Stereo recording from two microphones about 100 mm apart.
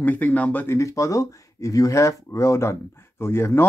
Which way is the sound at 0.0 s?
15° left (ahead or behind).